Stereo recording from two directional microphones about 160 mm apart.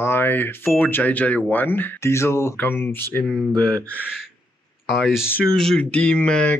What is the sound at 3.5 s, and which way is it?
Speech, 25° right (ahead or behind).